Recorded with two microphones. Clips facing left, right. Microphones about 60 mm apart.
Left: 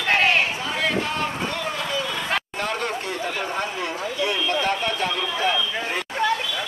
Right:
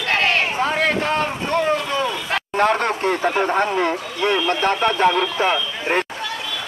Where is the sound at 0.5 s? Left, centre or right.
Right.